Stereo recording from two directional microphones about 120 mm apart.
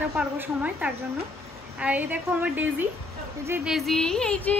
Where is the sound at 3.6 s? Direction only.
Centre (ahead or behind).